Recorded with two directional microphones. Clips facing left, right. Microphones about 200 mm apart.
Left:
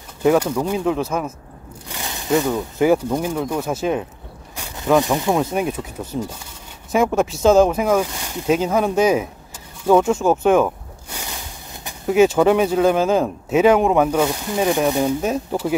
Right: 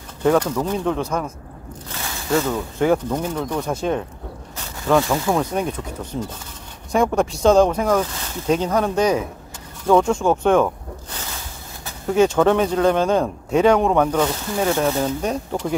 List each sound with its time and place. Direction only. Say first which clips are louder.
0.2 s speech: left 1 dB; 10° left (ahead or behind)
1.9 s speech: left 2 dB; 15° left (ahead or behind)
6.9 s speech: left 1 dB; 5° left (ahead or behind)